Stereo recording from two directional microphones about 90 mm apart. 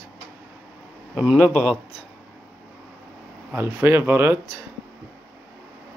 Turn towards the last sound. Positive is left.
turn(degrees=-25)  # may be behind; listen again after turning